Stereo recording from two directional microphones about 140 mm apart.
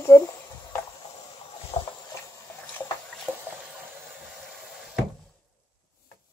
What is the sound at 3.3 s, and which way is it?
Water, centre (ahead or behind).